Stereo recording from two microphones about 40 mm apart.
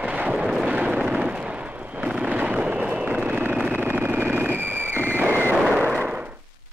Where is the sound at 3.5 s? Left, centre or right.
Right.